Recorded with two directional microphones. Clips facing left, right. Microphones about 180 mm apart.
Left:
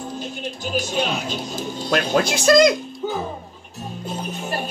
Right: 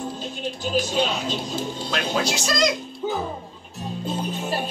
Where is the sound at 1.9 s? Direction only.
55° left (ahead or behind).